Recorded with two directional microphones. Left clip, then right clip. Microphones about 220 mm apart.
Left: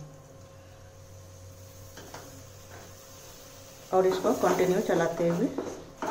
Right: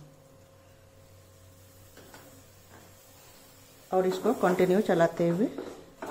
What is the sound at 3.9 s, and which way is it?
A woman's voice, 45° right (ahead or behind).